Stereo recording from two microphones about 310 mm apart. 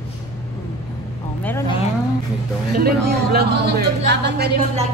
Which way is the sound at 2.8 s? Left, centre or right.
Right.